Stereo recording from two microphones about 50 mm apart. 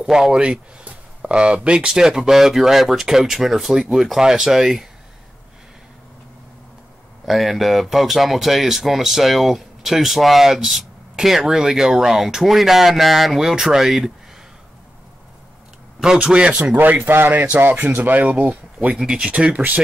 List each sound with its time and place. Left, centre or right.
0.1 s speech: centre
7.2 s speech: centre
16.0 s speech: centre
16.7 s speech: right
18.9 s speech: centre